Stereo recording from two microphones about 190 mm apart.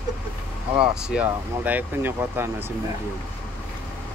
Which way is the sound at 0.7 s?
5° right (ahead or behind).